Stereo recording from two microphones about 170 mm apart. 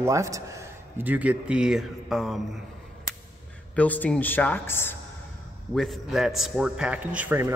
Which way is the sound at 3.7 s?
10° left (ahead or behind).